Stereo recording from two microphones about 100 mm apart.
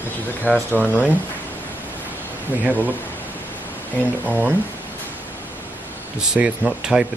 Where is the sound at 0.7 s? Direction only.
15° right (ahead or behind).